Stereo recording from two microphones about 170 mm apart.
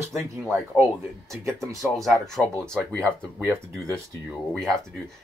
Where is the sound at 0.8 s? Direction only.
15° right (ahead or behind).